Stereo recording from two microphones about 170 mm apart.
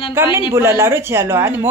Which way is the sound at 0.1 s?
15° right (ahead or behind).